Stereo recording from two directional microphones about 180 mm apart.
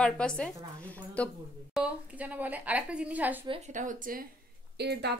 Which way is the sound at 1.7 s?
5° right (ahead or behind).